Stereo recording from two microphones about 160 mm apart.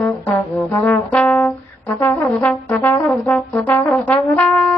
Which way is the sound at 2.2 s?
Centre (ahead or behind).